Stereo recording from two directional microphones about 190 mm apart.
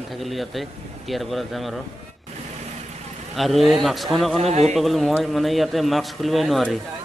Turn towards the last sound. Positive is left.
turn(degrees=0)  # may be behind; listen again after turning